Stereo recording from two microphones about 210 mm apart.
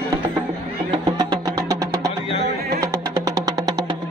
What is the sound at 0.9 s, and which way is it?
Music, 20° right (ahead or behind).